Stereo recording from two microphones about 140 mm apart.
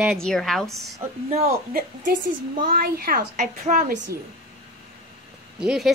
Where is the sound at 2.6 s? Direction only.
90° right.